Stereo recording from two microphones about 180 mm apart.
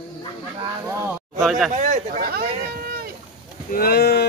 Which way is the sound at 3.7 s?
60° left (ahead or behind).